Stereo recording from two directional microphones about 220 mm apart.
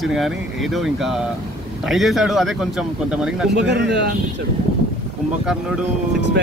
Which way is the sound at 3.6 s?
50° right (ahead or behind).